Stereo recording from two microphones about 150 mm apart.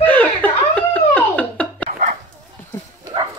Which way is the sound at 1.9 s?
55° right (ahead or behind).